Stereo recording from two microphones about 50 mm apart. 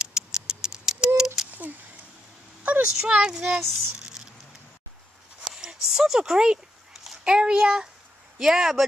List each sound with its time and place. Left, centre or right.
0.0 s patter: centre
2.6 s a sound: right
3.0 s speech: centre
4.0 s patter: centre
5.4 s a sound: centre
5.9 s a child's voice: centre